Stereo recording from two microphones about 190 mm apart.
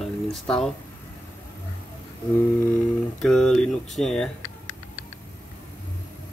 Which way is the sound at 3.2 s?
5° left (ahead or behind).